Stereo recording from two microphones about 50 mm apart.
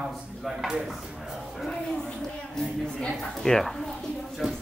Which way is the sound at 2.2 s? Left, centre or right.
Centre.